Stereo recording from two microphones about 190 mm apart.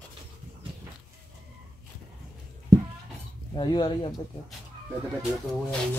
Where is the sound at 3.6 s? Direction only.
25° left (ahead or behind).